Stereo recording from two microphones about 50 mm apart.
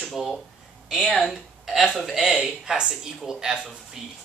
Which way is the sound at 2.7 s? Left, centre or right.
Centre.